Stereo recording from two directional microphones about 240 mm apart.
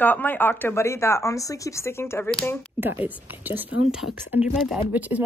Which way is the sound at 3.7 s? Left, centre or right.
Left.